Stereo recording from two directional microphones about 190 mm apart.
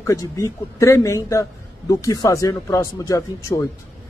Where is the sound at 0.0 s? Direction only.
15° left (ahead or behind).